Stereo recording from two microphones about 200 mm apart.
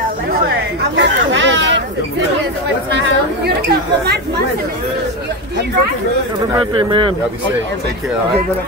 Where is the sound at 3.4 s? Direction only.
55° right (ahead or behind).